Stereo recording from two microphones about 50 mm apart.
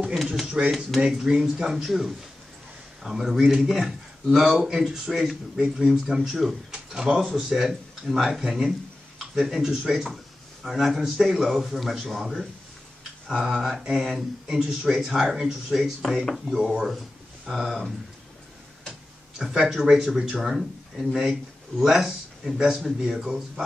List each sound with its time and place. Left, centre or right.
0.6 s speech: centre
6.7 s a man's voice: centre
16.0 s a man's voice: centre
16.5 s a man's voice: centre
19.3 s speech: centre